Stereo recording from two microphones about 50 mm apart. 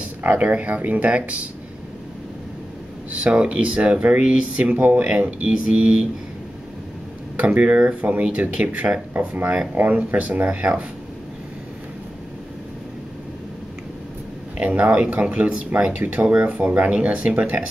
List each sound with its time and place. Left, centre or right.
0.4 s speech: right
3.1 s speech: right
7.3 s speech: right
9.9 s speech: right
14.6 s speech: right